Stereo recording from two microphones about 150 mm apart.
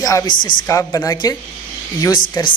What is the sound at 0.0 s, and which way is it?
Speech, 25° left (ahead or behind).